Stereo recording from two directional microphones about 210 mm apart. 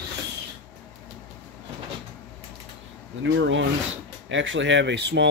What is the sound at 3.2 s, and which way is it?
Speech, 60° right (ahead or behind).